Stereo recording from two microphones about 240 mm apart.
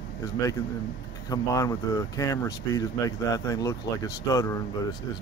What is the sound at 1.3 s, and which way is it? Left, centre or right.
Speech, centre.